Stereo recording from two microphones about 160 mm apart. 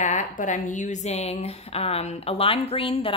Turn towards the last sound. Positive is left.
turn(degrees=35)  # may be behind; listen again after turning